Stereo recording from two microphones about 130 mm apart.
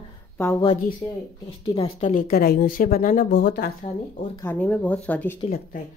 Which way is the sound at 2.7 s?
80° left.